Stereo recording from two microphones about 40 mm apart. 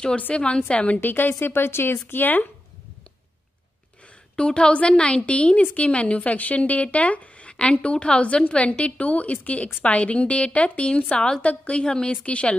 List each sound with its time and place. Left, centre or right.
0.3 s a woman's voice: left
1.0 s speech: left
4.4 s a woman's voice: left
11.8 s a woman's voice: left